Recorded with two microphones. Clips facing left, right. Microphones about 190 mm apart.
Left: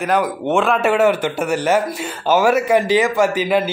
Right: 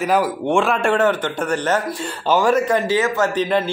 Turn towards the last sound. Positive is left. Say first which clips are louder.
# left 2 dB
turn(degrees=5)  # may be behind; listen again after turning